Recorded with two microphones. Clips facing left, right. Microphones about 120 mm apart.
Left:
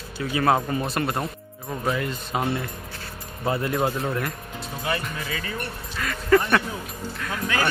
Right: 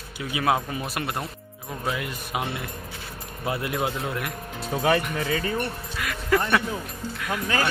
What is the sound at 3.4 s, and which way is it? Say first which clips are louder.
Speech: left 3 dB; 10° right (ahead or behind).